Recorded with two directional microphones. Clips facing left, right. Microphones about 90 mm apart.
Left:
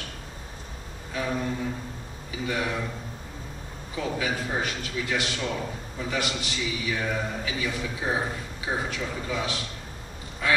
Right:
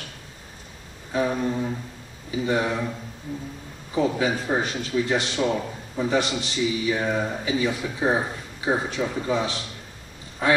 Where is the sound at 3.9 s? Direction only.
30° right (ahead or behind).